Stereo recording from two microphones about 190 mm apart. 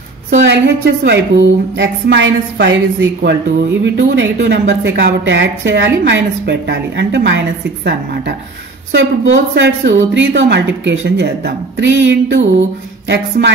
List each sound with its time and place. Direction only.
0.5 s a woman's voice: 60° right (ahead or behind)
13.4 s a woman's voice: 55° right (ahead or behind)